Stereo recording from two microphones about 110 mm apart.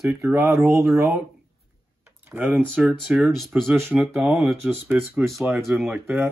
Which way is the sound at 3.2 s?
Centre (ahead or behind).